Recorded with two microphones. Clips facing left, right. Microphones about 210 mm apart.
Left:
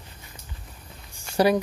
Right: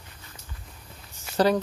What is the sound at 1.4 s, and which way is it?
Speech, 10° left (ahead or behind).